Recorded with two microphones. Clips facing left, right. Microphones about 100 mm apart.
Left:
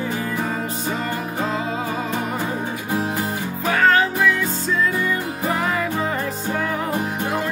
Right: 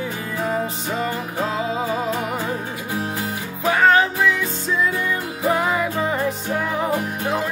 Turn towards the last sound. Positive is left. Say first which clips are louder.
# right 1 dB
turn(degrees=-10)  # may be behind; listen again after turning